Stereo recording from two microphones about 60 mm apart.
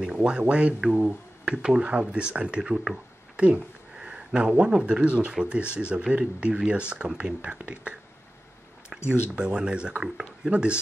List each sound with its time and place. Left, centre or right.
0.0 s speech: centre
9.0 s speech: centre